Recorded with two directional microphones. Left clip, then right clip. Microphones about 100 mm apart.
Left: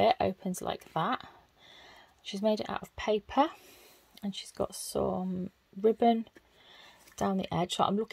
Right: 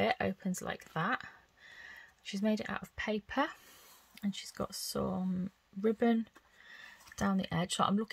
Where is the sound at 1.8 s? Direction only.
20° left (ahead or behind).